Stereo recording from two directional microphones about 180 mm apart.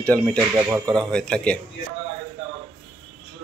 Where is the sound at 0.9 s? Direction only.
5° left (ahead or behind).